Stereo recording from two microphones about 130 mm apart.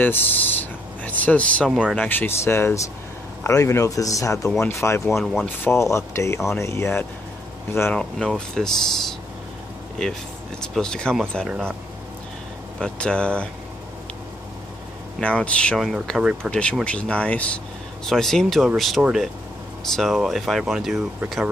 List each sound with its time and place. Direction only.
0.0 s speech: 15° left (ahead or behind)
1.7 s speech: centre (ahead or behind)
2.0 s speech: 15° left (ahead or behind)
5.2 s speech: 5° left (ahead or behind)
5.6 s speech: 20° left (ahead or behind)
8.0 s speech: 5° left (ahead or behind)
12.7 s speech: 5° left (ahead or behind)
15.1 s speech: 10° left (ahead or behind)